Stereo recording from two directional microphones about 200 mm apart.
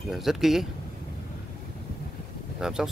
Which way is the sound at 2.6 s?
5° right (ahead or behind).